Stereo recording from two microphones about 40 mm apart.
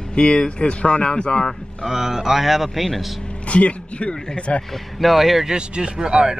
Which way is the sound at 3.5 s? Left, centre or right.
Left.